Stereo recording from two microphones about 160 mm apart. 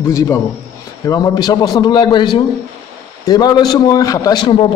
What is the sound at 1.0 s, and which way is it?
A man's voice, 25° left (ahead or behind).